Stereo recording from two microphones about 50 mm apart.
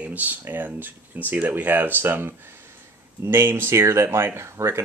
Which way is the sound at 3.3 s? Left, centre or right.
Right.